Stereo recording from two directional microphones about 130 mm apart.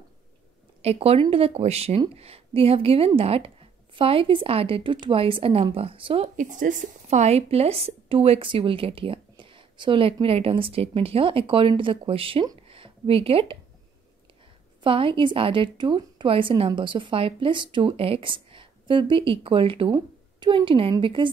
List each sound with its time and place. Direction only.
0.8 s a woman's voice: 50° right (ahead or behind)
6.2 s speech: 75° right (ahead or behind); by 12.4 s 45° right (ahead or behind)
12.6 s a sound: 45° right (ahead or behind)
14.8 s a woman's voice: 45° right (ahead or behind)